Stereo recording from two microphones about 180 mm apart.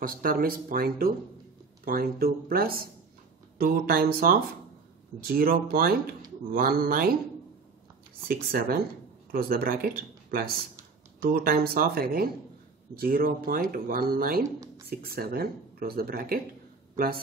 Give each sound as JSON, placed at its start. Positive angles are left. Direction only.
{"t": 0.0, "sound": "speech", "side_deg": -50}
{"t": 8.3, "sound": "speech", "side_deg": -60}
{"t": 11.1, "sound": "speech", "side_deg": -55}